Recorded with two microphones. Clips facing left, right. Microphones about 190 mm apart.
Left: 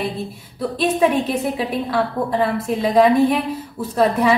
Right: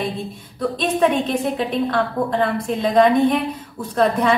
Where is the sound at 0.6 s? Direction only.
5° left (ahead or behind).